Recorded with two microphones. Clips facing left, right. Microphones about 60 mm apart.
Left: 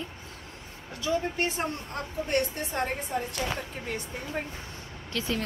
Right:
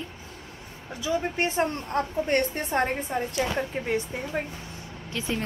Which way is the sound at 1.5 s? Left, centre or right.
Right.